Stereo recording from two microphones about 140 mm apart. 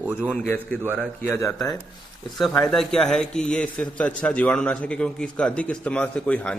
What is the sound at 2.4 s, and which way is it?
A man's voice, 5° left (ahead or behind).